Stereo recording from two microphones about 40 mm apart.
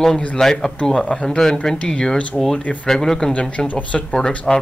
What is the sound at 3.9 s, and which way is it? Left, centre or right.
Speech, centre.